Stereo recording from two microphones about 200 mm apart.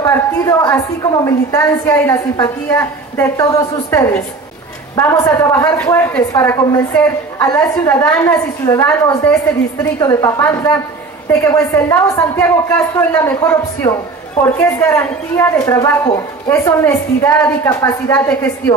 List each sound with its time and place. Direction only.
0.0 s a woman's voice: 15° left (ahead or behind)